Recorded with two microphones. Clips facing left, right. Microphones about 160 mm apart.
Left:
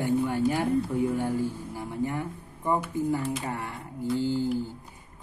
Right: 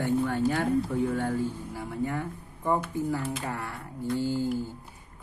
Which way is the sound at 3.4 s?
20° left (ahead or behind).